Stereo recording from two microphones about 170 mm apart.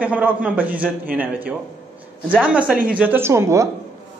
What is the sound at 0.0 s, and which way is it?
Speech, 10° right (ahead or behind).